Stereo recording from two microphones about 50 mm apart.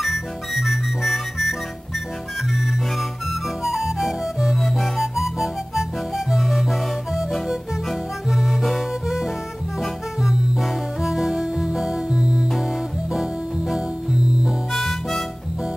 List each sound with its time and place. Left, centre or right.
0.0 s music: centre
3.6 s music: centre
13.1 s music: centre
14.7 s harmonica: centre